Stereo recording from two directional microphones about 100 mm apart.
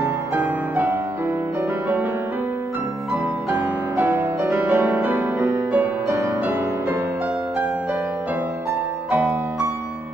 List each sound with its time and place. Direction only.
0.0 s music: 20° right (ahead or behind)
3.9 s music: 20° right (ahead or behind)
9.1 s music: 15° right (ahead or behind)